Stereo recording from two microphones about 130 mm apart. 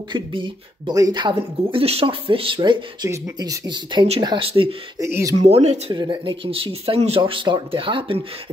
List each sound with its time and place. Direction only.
0.1 s speech: 40° right (ahead or behind)
4.5 s speech: 45° right (ahead or behind)
4.9 s speech: 25° right (ahead or behind)
5.4 s speech: 60° right (ahead or behind)
5.9 s speech: 40° right (ahead or behind)